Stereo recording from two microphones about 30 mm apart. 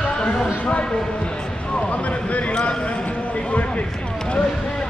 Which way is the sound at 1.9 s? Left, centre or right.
Left.